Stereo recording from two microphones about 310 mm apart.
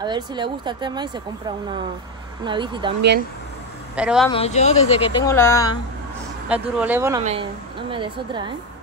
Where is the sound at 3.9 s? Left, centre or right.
Centre.